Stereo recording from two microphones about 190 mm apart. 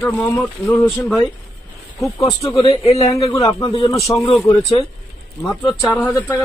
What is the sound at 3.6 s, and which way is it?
Speech, 30° left (ahead or behind).